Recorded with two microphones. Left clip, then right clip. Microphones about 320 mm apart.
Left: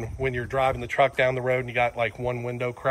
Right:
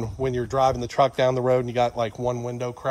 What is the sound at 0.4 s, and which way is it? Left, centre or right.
A man's voice, centre.